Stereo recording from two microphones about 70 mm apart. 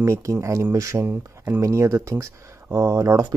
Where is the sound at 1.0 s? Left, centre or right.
Right.